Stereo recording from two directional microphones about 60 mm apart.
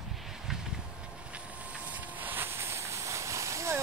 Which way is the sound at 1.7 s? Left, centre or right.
Right.